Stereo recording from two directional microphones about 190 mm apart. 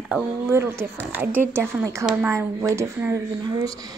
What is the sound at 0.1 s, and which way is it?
Speech, 15° right (ahead or behind).